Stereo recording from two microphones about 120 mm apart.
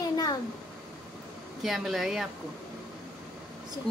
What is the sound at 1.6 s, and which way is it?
Speech, centre (ahead or behind).